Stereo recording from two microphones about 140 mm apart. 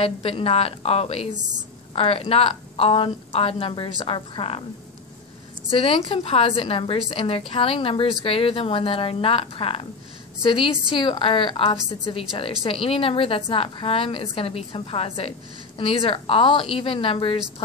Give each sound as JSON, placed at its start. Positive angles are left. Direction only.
{"t": 0.0, "sound": "a woman's voice", "side_deg": 40}
{"t": 5.7, "sound": "a woman's voice", "side_deg": 40}